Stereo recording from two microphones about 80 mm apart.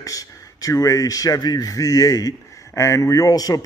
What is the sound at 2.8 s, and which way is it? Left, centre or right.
Speech, left.